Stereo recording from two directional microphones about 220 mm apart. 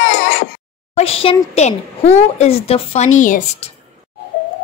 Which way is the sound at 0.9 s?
25° left (ahead or behind).